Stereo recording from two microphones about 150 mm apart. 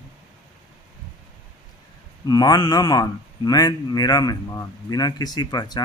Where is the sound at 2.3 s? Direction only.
25° left (ahead or behind).